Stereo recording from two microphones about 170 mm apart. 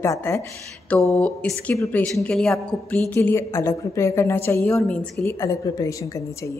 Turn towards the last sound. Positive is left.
turn(degrees=20)  # may be behind; listen again after turning